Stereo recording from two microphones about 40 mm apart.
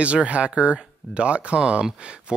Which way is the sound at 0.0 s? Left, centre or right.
Right.